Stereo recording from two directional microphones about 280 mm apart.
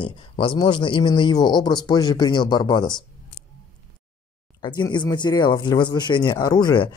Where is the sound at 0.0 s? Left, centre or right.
Centre.